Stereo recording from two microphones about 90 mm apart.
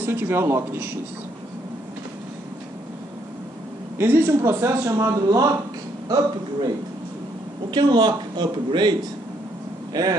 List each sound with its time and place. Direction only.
0.0 s speech: 25° right (ahead or behind)
4.0 s a man's voice: 25° right (ahead or behind)
6.0 s speech: 50° right (ahead or behind)
7.7 s a man's voice: 55° right (ahead or behind)
9.9 s speech: 50° right (ahead or behind)